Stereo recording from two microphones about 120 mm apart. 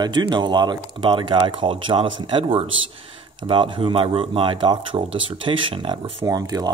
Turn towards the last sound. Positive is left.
turn(degrees=-30)  # may be behind; listen again after turning